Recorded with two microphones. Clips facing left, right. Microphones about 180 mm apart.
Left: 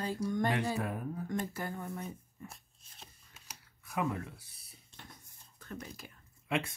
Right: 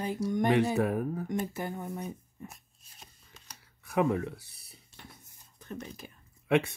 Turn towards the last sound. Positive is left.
turn(degrees=-70)  # may be behind; listen again after turning